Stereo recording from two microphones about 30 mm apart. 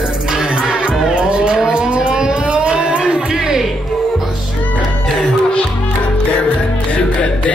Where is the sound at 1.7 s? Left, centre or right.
Right.